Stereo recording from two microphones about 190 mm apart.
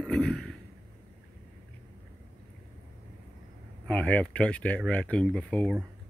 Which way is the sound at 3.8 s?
5° left (ahead or behind).